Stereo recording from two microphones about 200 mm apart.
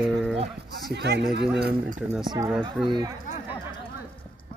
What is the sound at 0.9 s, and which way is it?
Speech, 60° right (ahead or behind).